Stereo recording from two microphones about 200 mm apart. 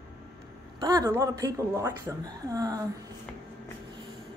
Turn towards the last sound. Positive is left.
turn(degrees=-20)  # may be behind; listen again after turning